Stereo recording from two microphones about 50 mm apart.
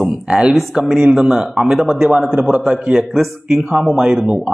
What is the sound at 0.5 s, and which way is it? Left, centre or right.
A man's voice, centre.